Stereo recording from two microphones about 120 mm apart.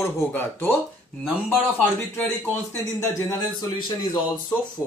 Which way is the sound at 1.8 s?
15° left (ahead or behind).